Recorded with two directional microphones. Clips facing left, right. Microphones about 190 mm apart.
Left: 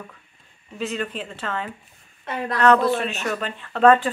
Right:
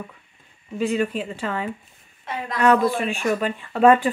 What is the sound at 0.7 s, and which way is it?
Speech, 10° right (ahead or behind).